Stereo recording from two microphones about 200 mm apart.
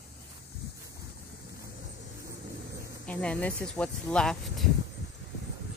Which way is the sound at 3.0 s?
5° left (ahead or behind).